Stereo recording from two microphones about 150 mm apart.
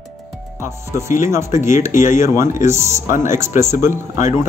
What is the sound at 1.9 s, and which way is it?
Speech, 55° left (ahead or behind).